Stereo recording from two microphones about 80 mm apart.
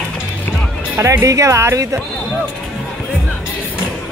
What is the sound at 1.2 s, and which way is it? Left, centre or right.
Speech, right.